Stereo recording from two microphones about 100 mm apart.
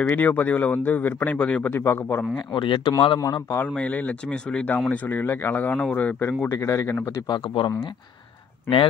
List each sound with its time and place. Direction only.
0.0 s speech: 15° left (ahead or behind)
2.3 s a man's voice: 55° left (ahead or behind)
3.2 s speech: 40° left (ahead or behind)
3.6 s speech: 15° left (ahead or behind)
7.2 s a man's voice: 45° left (ahead or behind)